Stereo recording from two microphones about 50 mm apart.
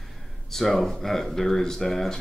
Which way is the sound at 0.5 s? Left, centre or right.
Centre.